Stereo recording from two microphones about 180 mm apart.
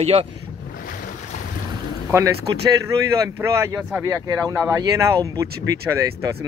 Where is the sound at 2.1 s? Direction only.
15° right (ahead or behind).